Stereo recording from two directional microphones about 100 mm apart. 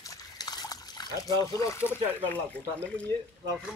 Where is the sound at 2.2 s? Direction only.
15° left (ahead or behind).